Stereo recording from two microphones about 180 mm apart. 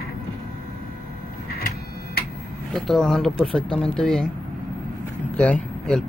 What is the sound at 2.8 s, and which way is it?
Speech, centre (ahead or behind).